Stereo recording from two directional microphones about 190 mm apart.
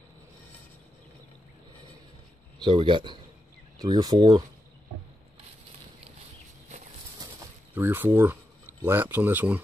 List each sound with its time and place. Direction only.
2.6 s speech: 25° right (ahead or behind)
7.2 s bird: 15° right (ahead or behind)
8.8 s speech: 10° right (ahead or behind)